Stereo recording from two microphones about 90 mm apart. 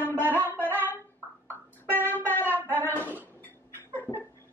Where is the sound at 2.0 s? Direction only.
20° left (ahead or behind).